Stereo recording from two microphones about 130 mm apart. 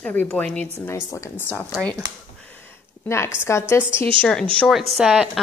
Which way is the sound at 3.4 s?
20° left (ahead or behind).